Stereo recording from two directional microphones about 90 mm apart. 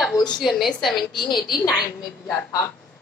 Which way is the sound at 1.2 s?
55° left (ahead or behind).